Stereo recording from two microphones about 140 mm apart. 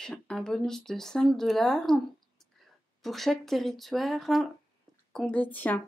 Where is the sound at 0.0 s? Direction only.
5° left (ahead or behind).